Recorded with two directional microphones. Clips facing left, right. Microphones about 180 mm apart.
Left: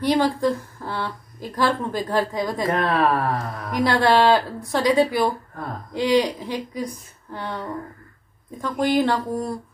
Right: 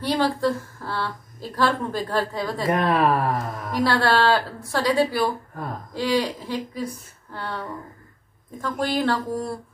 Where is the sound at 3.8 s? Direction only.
15° left (ahead or behind).